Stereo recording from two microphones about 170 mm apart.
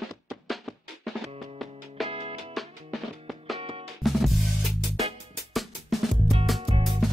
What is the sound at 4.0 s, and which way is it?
Drum kit, centre (ahead or behind).